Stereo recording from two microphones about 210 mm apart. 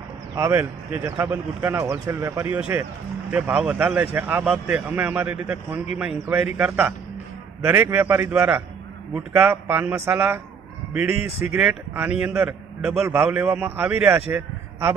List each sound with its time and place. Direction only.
0.4 s speech: 10° right (ahead or behind)
11.1 s speech: 30° left (ahead or behind)
11.4 s a man's voice: 5° right (ahead or behind)
14.3 s a sound: 10° right (ahead or behind)